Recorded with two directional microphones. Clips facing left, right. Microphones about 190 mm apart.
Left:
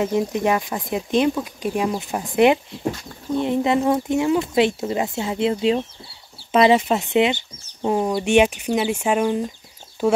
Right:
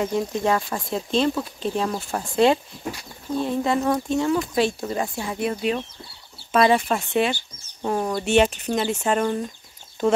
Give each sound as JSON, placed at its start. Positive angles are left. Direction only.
{"t": 0.0, "sound": "speech", "side_deg": 20}